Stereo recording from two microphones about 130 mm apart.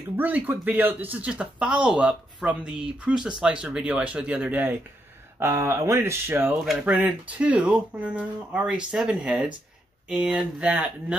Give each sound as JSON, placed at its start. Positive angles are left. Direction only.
{"t": 0.1, "sound": "speech", "side_deg": -15}